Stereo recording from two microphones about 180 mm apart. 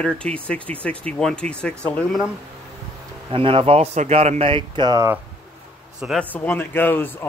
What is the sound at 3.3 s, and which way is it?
Speech, 30° right (ahead or behind).